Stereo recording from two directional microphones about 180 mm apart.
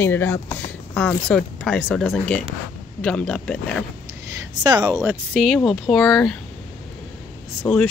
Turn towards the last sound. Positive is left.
turn(degrees=5)  # may be behind; listen again after turning